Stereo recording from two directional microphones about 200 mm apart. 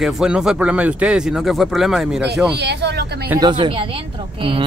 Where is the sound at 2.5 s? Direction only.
60° right (ahead or behind).